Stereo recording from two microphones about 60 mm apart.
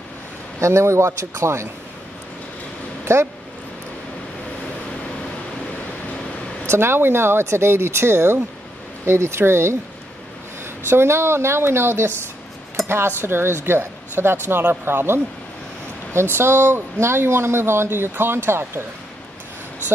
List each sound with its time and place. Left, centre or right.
0.6 s speech: right
3.1 s speech: right
6.6 s speech: right
10.9 s speech: right